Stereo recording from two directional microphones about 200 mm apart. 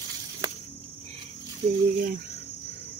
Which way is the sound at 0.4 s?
20° right (ahead or behind).